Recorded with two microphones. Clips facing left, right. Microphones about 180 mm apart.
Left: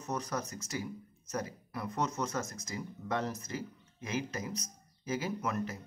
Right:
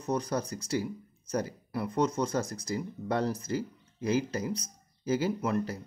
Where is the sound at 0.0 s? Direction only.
30° right (ahead or behind).